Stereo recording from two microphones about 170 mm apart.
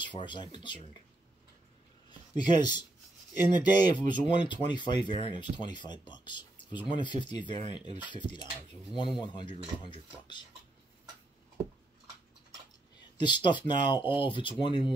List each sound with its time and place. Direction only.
0.0 s speech: 30° left (ahead or behind)
2.0 s a sound: 25° left (ahead or behind)
3.4 s speech: 25° left (ahead or behind)
13.2 s speech: 25° left (ahead or behind)